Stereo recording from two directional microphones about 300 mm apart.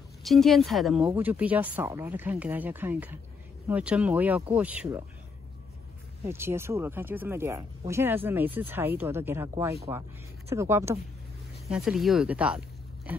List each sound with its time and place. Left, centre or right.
0.2 s speech: centre
6.2 s speech: centre